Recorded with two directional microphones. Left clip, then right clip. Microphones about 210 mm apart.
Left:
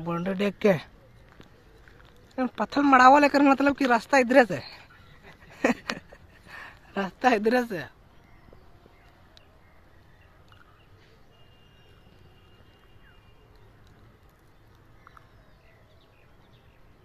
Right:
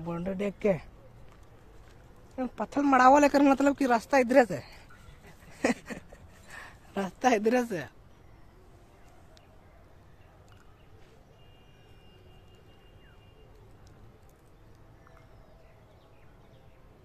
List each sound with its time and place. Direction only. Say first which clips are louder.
0.0 s speech: left 5 dB; 25° left (ahead or behind)
2.3 s speech: left 5 dB; 20° left (ahead or behind)
5.5 s a sound: left 4 dB; 15° left (ahead or behind)
6.5 s speech: left 3 dB; centre (ahead or behind)